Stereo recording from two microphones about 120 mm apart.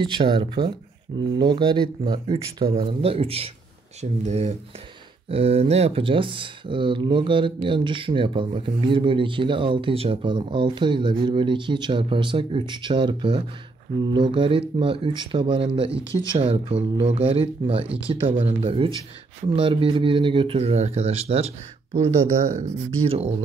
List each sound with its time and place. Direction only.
0.0 s speech: 45° right (ahead or behind)
2.2 s speech: 55° right (ahead or behind)
4.0 s speech: 70° right (ahead or behind)
5.3 s speech: 55° right (ahead or behind)
23.0 s speech: 50° right (ahead or behind)